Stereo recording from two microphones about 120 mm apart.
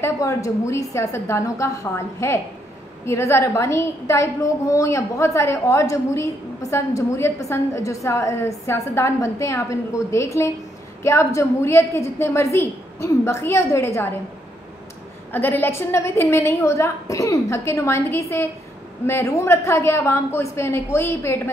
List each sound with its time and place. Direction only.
0.0 s a woman's voice: 25° left (ahead or behind)
15.3 s a woman's voice: 15° left (ahead or behind)